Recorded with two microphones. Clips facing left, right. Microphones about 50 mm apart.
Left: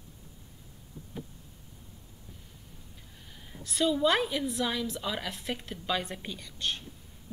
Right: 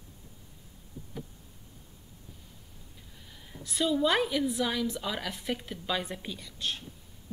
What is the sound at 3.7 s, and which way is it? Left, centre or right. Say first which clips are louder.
A woman's voice: left 1 dB; centre.